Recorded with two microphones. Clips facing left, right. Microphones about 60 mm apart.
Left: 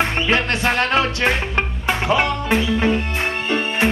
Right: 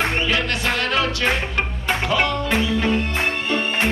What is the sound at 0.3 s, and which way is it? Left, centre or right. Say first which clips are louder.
Music: left 3 dB; left.